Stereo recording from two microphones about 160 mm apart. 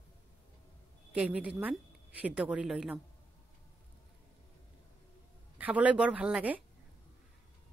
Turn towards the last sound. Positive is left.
turn(degrees=-10)  # may be behind; listen again after turning